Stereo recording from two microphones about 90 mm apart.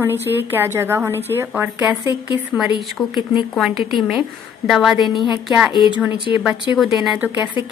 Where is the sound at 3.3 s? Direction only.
Centre (ahead or behind).